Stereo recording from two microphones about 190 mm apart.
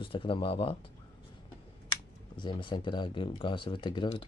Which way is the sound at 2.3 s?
25° left (ahead or behind).